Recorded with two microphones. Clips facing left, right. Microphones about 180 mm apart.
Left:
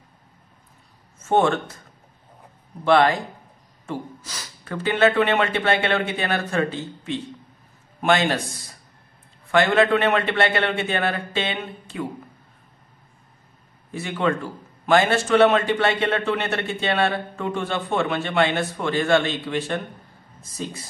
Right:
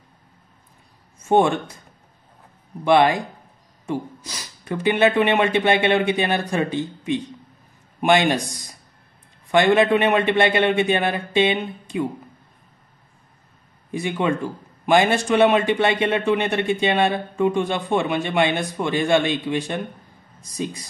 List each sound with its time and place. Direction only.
1.2 s a man's voice: 15° right (ahead or behind)
2.8 s a man's voice: 15° right (ahead or behind)
13.9 s a man's voice: 15° right (ahead or behind)